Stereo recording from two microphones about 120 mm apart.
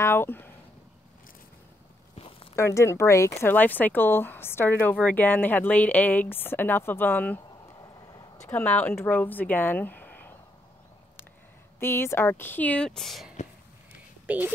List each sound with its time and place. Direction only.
0.0 s speech: 20° left (ahead or behind)
2.1 s walk: 50° left (ahead or behind)
2.5 s speech: 25° left (ahead or behind)
8.5 s speech: 15° left (ahead or behind)
11.8 s speech: 20° left (ahead or behind); by 13.3 s centre (ahead or behind)
14.2 s speech: 15° right (ahead or behind)